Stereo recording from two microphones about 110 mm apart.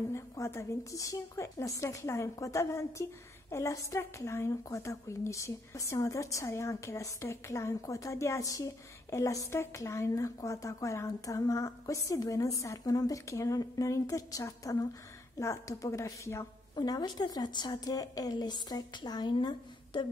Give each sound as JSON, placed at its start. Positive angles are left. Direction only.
{"t": 0.1, "sound": "a woman's voice", "side_deg": 25}
{"t": 16.7, "sound": "a woman's voice", "side_deg": 40}